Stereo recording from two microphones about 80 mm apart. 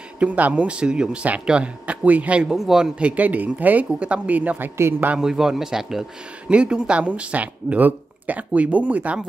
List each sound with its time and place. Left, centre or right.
0.2 s speech: centre
2.4 s speech: centre; by 4.6 s right
4.7 s a man's voice: right
5.1 s speech: centre